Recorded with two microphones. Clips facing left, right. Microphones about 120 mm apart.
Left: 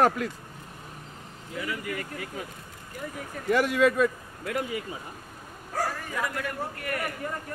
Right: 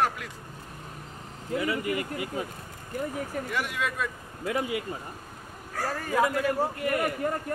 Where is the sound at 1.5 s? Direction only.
25° right (ahead or behind).